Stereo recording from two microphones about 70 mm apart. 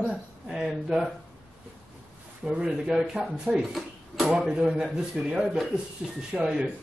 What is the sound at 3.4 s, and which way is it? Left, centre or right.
Speech, centre.